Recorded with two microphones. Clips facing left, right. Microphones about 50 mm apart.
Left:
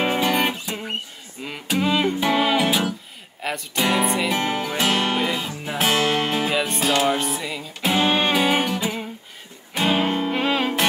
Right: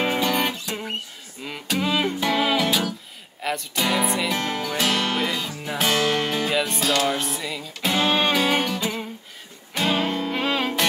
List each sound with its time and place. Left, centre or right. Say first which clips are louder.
0.2 s music: left 2 dB; centre
1.4 s a sound: left 2 dB; centre
2.1 s music: left 2 dB; centre
3.4 s speech: left 1 dB; centre
4.0 s music: left 2 dB; centre
4.3 s music: left 2 dB; centre
7.2 s music: left 2 dB; centre